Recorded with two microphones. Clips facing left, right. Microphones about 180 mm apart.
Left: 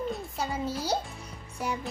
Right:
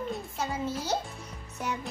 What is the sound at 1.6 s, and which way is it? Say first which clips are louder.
Speech: left 1 dB; 10° left (ahead or behind).